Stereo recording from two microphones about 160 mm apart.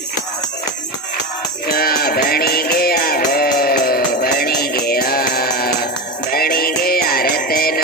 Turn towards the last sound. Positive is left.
turn(degrees=70)  # may be behind; listen again after turning